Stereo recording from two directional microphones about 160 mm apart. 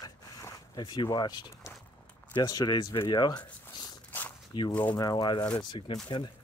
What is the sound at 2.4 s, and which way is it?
Speech, 25° left (ahead or behind).